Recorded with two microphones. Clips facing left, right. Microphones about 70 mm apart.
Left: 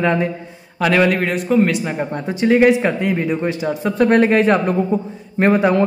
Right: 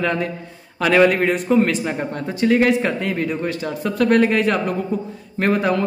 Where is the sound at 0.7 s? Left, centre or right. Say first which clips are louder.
Right 1 dB; centre.